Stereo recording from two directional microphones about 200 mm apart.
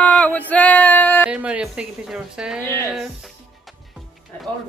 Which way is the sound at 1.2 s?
5° right (ahead or behind).